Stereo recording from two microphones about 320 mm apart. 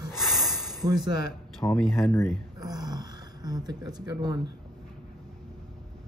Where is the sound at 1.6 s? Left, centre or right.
Centre.